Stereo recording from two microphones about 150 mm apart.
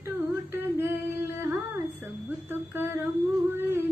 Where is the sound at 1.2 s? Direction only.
15° right (ahead or behind).